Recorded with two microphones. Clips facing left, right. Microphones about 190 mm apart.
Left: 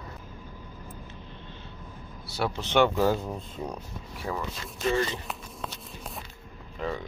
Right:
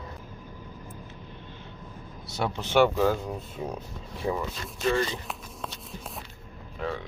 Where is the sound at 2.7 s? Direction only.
5° right (ahead or behind).